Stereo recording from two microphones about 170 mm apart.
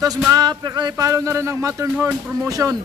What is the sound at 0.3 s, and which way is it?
Speech, 25° right (ahead or behind).